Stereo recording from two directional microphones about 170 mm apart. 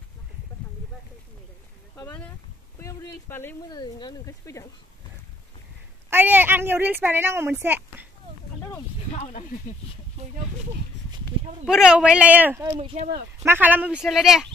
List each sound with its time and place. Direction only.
2.8 s speech: 20° left (ahead or behind)
6.0 s speech: 10° right (ahead or behind)
9.1 s speech: 45° left (ahead or behind)
11.6 s speech: 5° right (ahead or behind)
12.7 s speech: 35° right (ahead or behind)
13.4 s speech: 10° right (ahead or behind)